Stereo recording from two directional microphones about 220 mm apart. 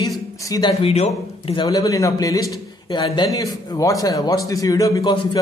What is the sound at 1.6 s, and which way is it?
A man's voice, 15° left (ahead or behind).